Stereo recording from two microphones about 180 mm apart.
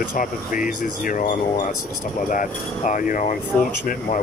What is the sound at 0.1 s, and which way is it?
Speech, 45° left (ahead or behind).